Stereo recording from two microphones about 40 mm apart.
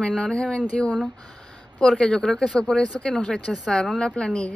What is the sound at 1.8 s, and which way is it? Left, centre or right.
A woman's voice, left.